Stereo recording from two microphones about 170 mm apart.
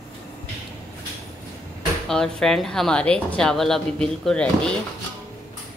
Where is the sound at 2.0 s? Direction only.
5° left (ahead or behind).